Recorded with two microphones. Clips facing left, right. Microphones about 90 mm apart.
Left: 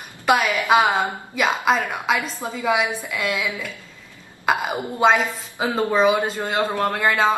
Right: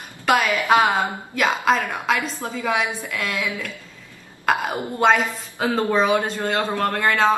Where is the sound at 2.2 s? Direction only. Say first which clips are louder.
Even; 15° left (ahead or behind).